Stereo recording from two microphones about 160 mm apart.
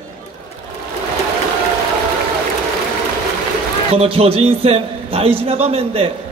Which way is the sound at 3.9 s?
35° right (ahead or behind).